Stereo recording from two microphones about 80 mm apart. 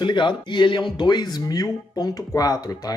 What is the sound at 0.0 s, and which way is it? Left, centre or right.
Speech, left.